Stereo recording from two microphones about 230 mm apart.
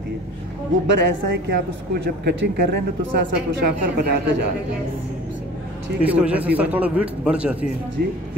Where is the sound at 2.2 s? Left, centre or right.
Right.